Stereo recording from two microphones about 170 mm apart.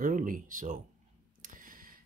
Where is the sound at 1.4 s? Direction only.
55° right (ahead or behind).